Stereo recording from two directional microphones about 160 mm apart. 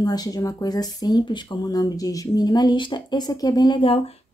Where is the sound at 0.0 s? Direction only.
25° left (ahead or behind).